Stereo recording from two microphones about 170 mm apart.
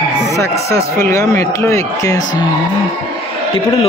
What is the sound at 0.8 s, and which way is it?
Speech, 15° left (ahead or behind).